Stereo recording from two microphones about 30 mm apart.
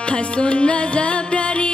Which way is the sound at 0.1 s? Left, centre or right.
Left.